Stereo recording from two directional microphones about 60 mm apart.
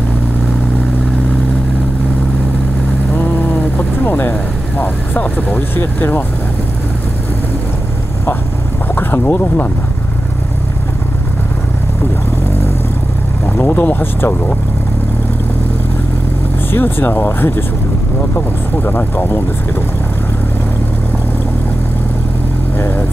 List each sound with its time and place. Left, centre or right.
3.7 s vehicle: left
5.8 s speech: left
8.9 s boat: left
13.7 s vehicle: left
16.7 s speech: left
22.8 s vehicle: left